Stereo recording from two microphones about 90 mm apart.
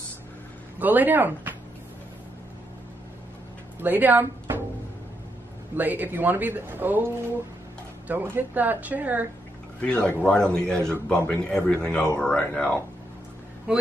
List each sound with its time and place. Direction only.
0.7 s a man's voice: 20° right (ahead or behind)
3.8 s speech: 20° right (ahead or behind)
5.8 s a man's voice: 20° right (ahead or behind)
9.8 s a man's voice: 10° left (ahead or behind)
13.7 s speech: 10° right (ahead or behind)